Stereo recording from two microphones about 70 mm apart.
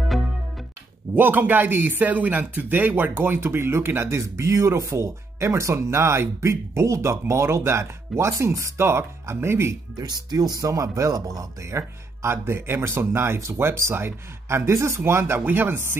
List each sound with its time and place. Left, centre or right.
1.1 s speech: right
9.9 s speech: right
11.7 s speech: right